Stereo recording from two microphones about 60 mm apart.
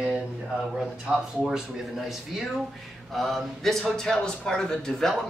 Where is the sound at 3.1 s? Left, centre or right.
Centre.